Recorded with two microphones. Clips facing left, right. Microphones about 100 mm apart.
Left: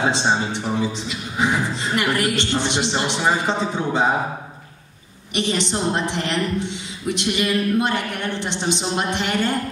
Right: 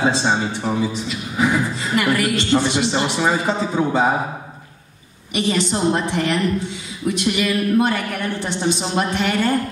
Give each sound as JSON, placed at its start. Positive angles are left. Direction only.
{"t": 0.1, "sound": "a woman's voice", "side_deg": 25}
{"t": 5.3, "sound": "a woman's voice", "side_deg": 25}